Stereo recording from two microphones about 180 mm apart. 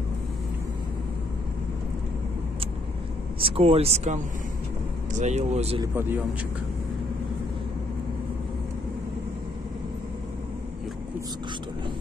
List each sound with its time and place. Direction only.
3.3 s speech: 30° right (ahead or behind)
5.2 s speech: 40° right (ahead or behind)
5.9 s speech: 10° right (ahead or behind)